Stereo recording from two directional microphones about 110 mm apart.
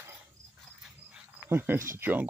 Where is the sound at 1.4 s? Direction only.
20° right (ahead or behind).